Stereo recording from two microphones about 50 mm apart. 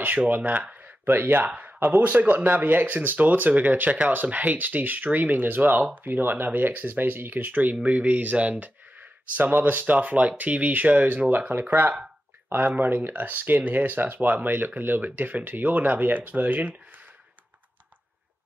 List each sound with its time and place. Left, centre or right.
0.0 s speech: right
0.6 s a sound: right
1.0 s speech: right
1.5 s speech: right